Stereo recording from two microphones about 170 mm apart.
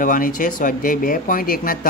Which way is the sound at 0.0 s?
50° left (ahead or behind).